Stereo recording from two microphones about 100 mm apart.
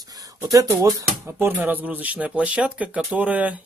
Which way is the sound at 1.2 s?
20° right (ahead or behind).